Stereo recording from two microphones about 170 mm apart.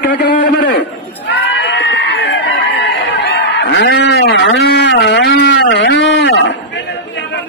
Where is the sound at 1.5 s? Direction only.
90° left.